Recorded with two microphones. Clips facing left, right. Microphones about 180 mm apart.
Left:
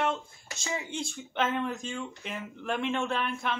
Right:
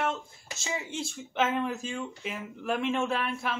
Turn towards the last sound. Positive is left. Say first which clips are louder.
# right 1 dB
turn(degrees=-5)  # may be behind; listen again after turning